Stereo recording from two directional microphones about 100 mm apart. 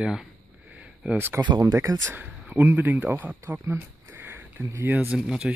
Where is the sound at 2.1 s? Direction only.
20° right (ahead or behind).